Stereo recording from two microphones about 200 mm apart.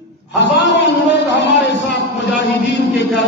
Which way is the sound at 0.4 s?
60° left (ahead or behind).